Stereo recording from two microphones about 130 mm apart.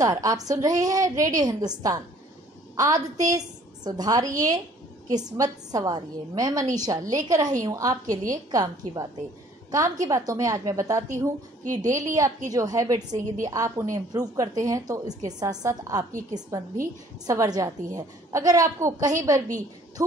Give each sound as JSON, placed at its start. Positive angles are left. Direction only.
{"t": 0.0, "sound": "a woman's voice", "side_deg": -25}